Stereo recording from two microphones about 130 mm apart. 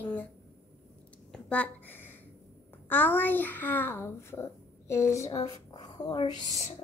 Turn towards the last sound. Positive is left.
turn(degrees=60)  # may be behind; listen again after turning